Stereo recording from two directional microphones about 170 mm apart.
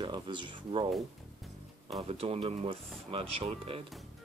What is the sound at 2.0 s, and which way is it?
Speech, 35° right (ahead or behind).